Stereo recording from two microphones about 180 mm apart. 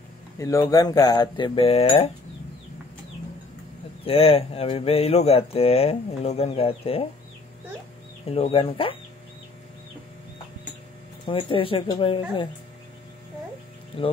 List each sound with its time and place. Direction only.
0.4 s speech: 15° left (ahead or behind)
4.0 s speech: 30° left (ahead or behind)
8.3 s speech: 30° left (ahead or behind)
11.2 s speech: 30° left (ahead or behind)
13.9 s speech: 30° left (ahead or behind)